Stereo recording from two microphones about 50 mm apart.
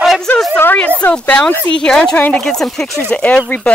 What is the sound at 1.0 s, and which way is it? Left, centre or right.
Speech, left.